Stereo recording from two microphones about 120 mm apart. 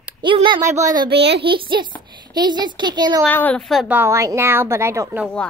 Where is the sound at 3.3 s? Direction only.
15° left (ahead or behind).